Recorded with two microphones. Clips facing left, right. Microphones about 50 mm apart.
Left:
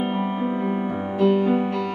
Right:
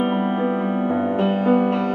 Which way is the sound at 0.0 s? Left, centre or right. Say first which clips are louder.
Right 4 dB; right.